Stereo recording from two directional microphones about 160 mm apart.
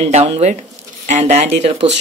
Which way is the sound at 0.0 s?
40° right (ahead or behind).